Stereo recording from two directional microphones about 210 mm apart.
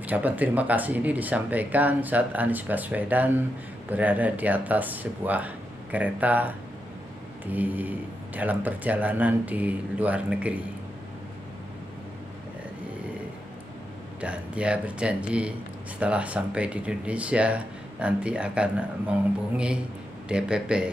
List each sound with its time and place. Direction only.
0.0 s speech: 5° right (ahead or behind)
7.5 s speech: 10° right (ahead or behind)
14.2 s speech: 5° right (ahead or behind)